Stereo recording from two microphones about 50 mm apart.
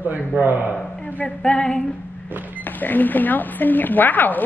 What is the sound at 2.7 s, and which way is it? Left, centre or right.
A woman's voice, left.